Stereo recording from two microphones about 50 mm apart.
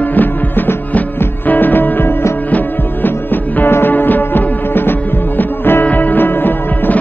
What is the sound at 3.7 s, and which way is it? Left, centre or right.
Music, left.